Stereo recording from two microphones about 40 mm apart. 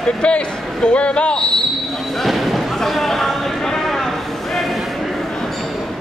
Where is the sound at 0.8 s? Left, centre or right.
Left.